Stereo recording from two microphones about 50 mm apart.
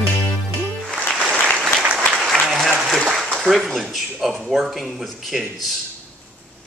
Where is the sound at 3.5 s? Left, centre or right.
Centre.